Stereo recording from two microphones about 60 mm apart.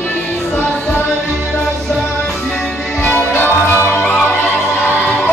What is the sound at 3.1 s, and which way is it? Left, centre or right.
Music, left.